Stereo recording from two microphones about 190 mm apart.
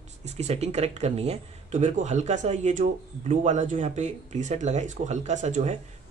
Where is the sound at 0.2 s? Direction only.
35° right (ahead or behind).